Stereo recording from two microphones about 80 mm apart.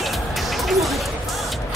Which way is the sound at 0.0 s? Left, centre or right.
Centre.